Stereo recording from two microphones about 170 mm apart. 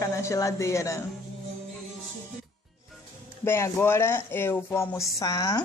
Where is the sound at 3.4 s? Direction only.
15° left (ahead or behind).